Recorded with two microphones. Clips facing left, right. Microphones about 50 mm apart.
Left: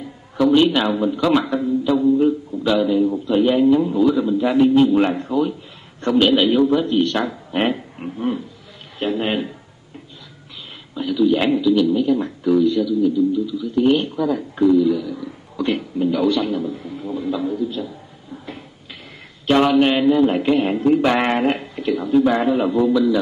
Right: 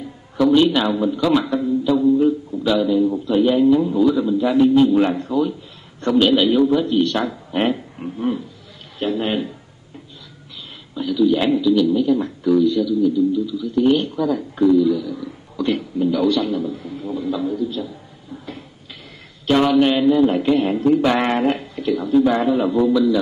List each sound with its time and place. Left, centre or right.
0.4 s a man's voice: centre
5.9 s a sound: centre
6.3 s a man's voice: centre
11.0 s a man's voice: centre
19.4 s a man's voice: centre